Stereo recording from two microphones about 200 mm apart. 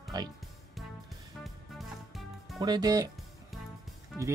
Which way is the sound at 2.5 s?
20° right (ahead or behind).